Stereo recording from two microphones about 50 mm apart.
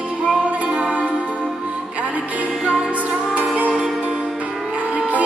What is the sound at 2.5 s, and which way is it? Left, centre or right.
Music, centre.